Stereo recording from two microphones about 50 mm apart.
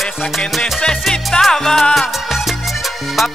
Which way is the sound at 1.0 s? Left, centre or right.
Centre.